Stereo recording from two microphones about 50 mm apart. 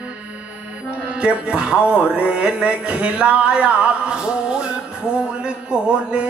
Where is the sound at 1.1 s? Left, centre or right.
Right.